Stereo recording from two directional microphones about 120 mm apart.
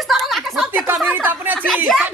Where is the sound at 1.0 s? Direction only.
15° right (ahead or behind).